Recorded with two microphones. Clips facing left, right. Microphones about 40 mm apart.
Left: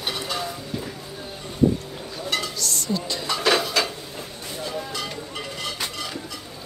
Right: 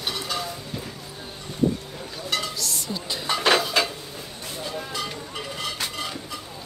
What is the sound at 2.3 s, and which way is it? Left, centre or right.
Music, centre.